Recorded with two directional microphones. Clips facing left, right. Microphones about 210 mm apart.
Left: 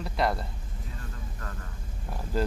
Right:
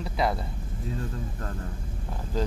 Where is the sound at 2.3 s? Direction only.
5° left (ahead or behind).